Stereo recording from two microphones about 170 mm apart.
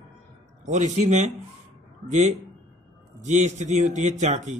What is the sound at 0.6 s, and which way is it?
Speech, 45° right (ahead or behind).